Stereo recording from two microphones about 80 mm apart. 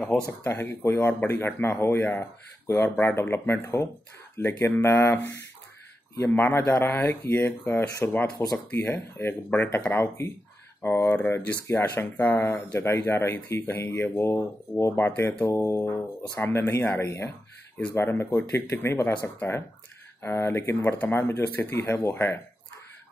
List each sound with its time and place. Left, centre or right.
0.3 s speech: left